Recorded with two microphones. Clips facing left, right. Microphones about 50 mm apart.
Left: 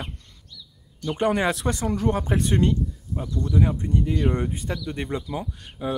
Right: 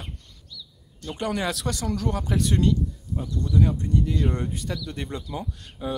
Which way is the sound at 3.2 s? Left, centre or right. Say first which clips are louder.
Left 1 dB; centre.